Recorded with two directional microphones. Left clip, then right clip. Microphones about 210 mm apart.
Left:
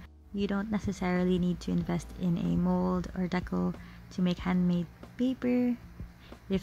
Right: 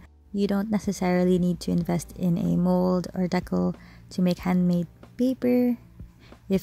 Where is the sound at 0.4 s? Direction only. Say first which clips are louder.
Right 6 dB; 30° right (ahead or behind).